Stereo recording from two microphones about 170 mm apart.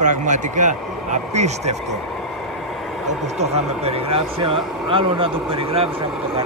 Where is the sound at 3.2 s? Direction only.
40° right (ahead or behind).